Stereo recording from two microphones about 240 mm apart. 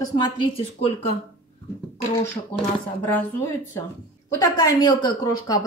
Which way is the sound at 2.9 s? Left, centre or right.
Centre.